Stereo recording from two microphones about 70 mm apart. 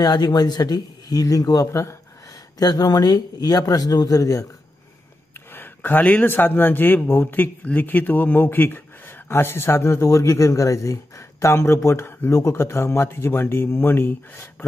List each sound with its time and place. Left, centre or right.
0.0 s speech: left
1.7 s speech: left
2.6 s speech: left
5.5 s a man's voice: left